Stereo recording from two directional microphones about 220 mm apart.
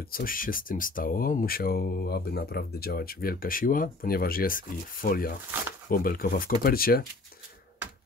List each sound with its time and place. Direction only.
0.0 s speech: 40° left (ahead or behind)